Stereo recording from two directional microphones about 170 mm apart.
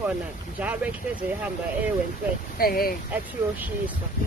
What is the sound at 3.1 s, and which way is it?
Speech, 10° right (ahead or behind).